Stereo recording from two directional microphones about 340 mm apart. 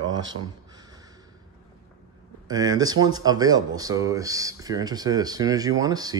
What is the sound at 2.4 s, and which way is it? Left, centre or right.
Speech, centre.